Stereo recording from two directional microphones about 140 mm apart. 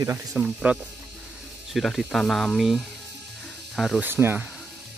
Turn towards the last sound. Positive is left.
turn(degrees=-15)  # may be behind; listen again after turning